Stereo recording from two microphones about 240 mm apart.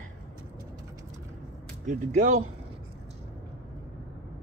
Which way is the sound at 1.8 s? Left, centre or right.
Right.